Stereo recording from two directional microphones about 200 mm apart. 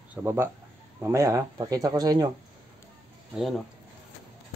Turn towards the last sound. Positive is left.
turn(degrees=0)  # may be behind; listen again after turning